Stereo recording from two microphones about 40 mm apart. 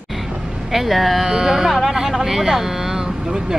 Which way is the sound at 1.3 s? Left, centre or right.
Centre.